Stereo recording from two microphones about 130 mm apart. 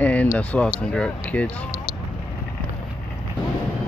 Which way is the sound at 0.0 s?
10° left (ahead or behind).